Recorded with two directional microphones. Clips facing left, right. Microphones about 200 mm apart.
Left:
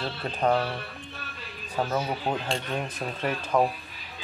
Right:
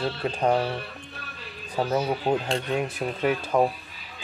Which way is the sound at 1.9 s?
10° right (ahead or behind).